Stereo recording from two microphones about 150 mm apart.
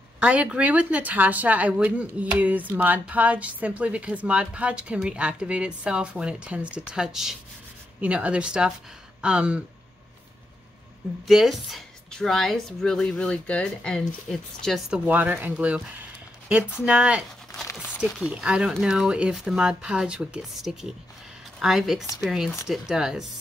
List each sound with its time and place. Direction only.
0.2 s a woman's voice: 5° right (ahead or behind)
11.2 s a woman's voice: centre (ahead or behind)
15.0 s speech: 10° right (ahead or behind)
15.5 s a sound: 10° right (ahead or behind)
16.8 s speech: 10° right (ahead or behind)
18.2 s a woman's voice: 5° right (ahead or behind)